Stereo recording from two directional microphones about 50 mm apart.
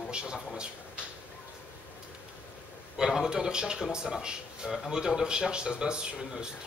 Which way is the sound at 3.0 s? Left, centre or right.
Centre.